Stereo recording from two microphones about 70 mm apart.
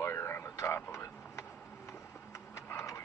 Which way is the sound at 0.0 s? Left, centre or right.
Left.